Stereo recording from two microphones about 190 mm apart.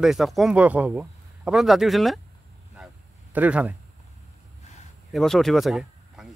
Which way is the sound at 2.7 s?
5° right (ahead or behind).